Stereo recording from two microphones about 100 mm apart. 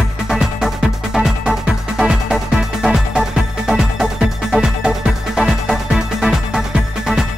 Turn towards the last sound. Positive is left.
turn(degrees=-5)  # may be behind; listen again after turning